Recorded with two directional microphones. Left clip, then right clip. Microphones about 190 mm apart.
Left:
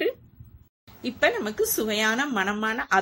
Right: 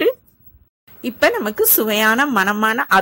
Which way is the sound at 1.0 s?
45° right (ahead or behind).